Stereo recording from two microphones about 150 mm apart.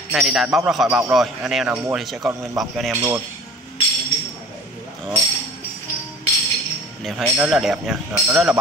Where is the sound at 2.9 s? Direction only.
20° right (ahead or behind).